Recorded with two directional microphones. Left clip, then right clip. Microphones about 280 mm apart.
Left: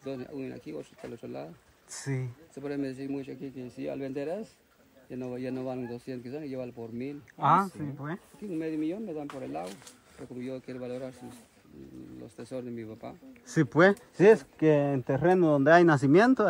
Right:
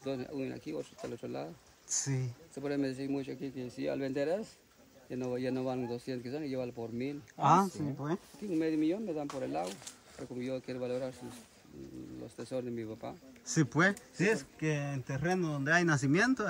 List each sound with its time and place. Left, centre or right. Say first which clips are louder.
0.0 s speech: even; centre
12.4 s speech: even; centre